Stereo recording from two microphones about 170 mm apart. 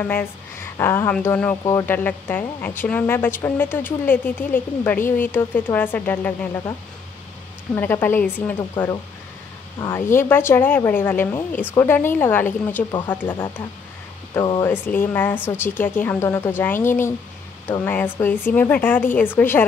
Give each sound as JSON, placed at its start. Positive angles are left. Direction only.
{"t": 0.0, "sound": "a woman's voice", "side_deg": 10}
{"t": 7.7, "sound": "a woman's voice", "side_deg": 10}
{"t": 14.3, "sound": "speech", "side_deg": 25}
{"t": 14.7, "sound": "a woman's voice", "side_deg": 10}